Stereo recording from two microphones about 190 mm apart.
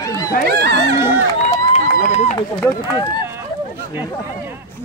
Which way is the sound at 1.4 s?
40° left (ahead or behind).